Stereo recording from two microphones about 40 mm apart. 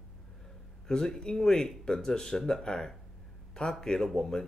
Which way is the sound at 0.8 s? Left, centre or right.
Centre.